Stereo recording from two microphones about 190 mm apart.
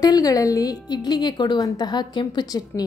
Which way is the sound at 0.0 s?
20° left (ahead or behind).